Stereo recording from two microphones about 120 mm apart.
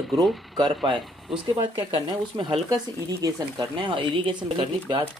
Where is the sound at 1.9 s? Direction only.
40° right (ahead or behind).